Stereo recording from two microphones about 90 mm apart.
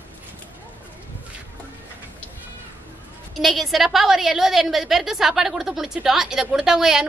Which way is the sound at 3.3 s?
Centre (ahead or behind).